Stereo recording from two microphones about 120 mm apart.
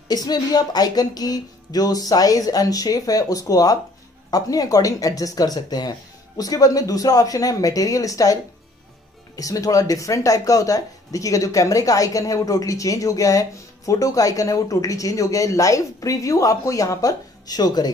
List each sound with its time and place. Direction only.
0.1 s speech: 35° left (ahead or behind)